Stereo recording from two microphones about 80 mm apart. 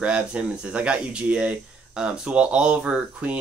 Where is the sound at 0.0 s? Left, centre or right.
Centre.